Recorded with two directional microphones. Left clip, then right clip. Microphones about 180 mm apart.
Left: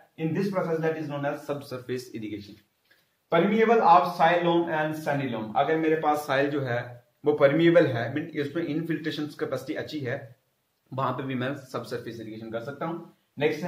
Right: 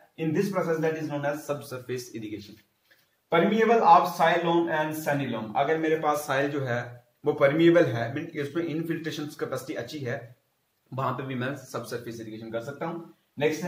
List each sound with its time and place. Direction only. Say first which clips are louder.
0.1 s a man's voice: right 1 dB; 5° left (ahead or behind)
1.7 s a man's voice: left 1 dB; 25° left (ahead or behind)
3.3 s a man's voice: even; 15° left (ahead or behind)